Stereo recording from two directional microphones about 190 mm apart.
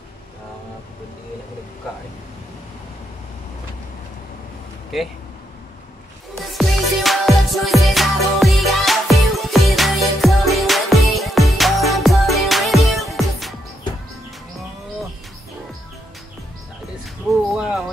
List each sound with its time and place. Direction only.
4.9 s speech: centre (ahead or behind)
6.3 s music: centre (ahead or behind)
17.6 s a sound: 5° right (ahead or behind)